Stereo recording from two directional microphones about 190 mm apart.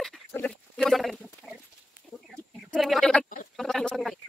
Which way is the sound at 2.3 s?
Centre (ahead or behind).